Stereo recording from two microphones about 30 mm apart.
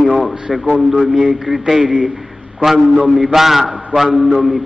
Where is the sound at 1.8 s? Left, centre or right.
Right.